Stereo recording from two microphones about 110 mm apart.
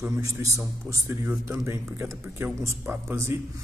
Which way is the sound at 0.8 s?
20° right (ahead or behind).